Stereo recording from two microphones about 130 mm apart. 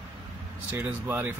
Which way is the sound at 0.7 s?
15° right (ahead or behind).